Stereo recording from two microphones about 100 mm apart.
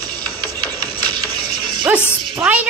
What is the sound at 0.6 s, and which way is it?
Music, 20° left (ahead or behind).